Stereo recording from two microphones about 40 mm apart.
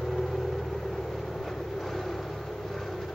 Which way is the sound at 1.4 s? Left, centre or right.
Centre.